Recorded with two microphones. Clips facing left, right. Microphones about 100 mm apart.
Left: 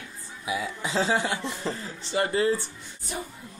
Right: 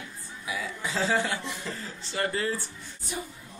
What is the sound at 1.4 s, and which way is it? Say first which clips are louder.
Speech: left 5 dB; 35° left (ahead or behind).